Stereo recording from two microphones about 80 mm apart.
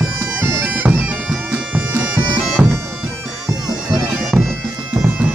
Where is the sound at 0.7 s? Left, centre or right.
Centre.